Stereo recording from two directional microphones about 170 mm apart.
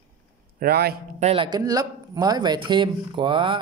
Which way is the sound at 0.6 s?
65° right (ahead or behind).